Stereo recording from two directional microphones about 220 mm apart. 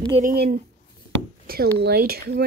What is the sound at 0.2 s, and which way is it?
Speech, 40° right (ahead or behind).